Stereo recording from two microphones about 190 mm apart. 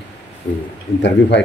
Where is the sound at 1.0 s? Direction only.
65° left (ahead or behind).